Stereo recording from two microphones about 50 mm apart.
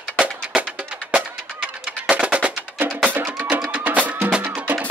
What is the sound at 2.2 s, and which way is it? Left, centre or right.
Music, right.